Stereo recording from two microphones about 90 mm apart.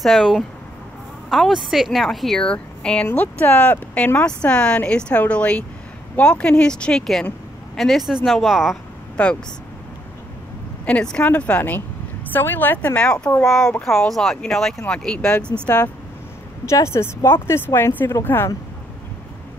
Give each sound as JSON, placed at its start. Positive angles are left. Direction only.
{"t": 0.0, "sound": "a woman's voice", "side_deg": 0}
{"t": 9.1, "sound": "speech", "side_deg": 10}
{"t": 10.9, "sound": "a woman's voice", "side_deg": 10}
{"t": 15.5, "sound": "speech", "side_deg": 30}